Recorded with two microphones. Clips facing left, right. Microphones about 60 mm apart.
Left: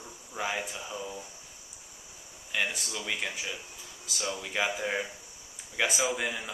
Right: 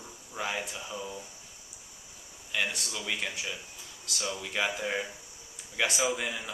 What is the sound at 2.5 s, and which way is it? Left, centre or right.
Speech, centre.